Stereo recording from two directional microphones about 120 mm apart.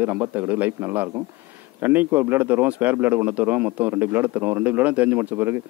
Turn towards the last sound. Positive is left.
turn(degrees=-15)  # may be behind; listen again after turning